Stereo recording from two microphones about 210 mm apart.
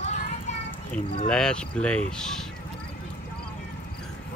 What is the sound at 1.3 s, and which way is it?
Speech, 5° left (ahead or behind).